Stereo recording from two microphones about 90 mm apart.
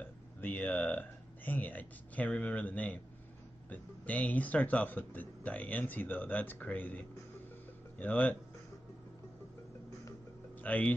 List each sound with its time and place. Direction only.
0.0 s a man's voice: 20° left (ahead or behind)
8.0 s a man's voice: 15° left (ahead or behind)
10.6 s speech: 15° left (ahead or behind)